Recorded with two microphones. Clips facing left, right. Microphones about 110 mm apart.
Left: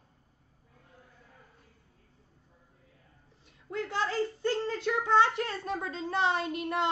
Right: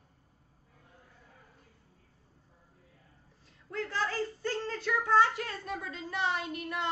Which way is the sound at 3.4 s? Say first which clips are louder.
Left 2 dB; 20° left (ahead or behind).